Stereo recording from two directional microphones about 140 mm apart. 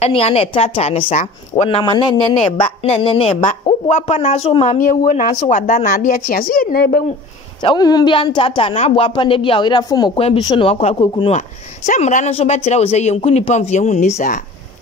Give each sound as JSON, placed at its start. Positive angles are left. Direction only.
{"t": 0.0, "sound": "speech", "side_deg": 45}
{"t": 1.1, "sound": "speech", "side_deg": 55}
{"t": 1.8, "sound": "speech", "side_deg": 35}
{"t": 2.6, "sound": "speech", "side_deg": 45}
{"t": 3.9, "sound": "speech", "side_deg": 50}
{"t": 4.7, "sound": "a woman's voice", "side_deg": 75}
{"t": 5.9, "sound": "speech", "side_deg": 90}
{"t": 7.6, "sound": "speech", "side_deg": 30}
{"t": 10.1, "sound": "speech", "side_deg": 40}
{"t": 11.3, "sound": "speech", "side_deg": 55}
{"t": 12.3, "sound": "speech", "side_deg": 45}